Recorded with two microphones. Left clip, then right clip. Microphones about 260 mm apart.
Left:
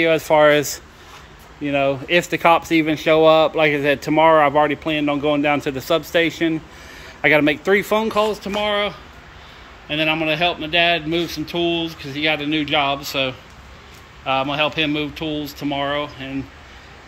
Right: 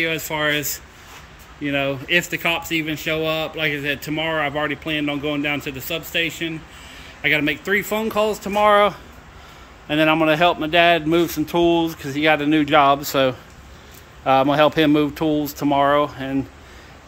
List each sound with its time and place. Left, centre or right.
0.3 s a man's voice: centre